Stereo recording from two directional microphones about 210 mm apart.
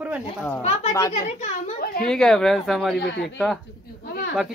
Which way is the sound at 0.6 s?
30° left (ahead or behind).